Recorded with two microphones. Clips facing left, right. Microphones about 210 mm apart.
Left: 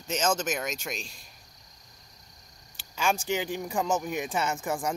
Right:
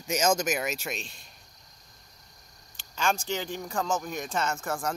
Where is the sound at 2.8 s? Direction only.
10° left (ahead or behind).